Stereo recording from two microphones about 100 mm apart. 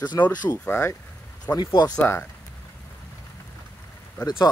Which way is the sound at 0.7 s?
25° left (ahead or behind).